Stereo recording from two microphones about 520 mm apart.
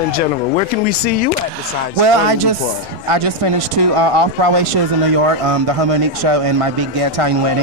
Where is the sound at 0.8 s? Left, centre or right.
Centre.